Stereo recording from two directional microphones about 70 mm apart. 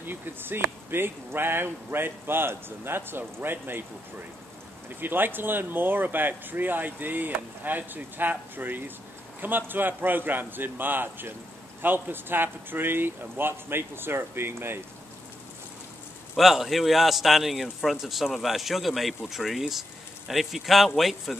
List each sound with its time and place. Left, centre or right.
0.0 s speech: right
4.8 s speech: right
16.3 s a man's voice: centre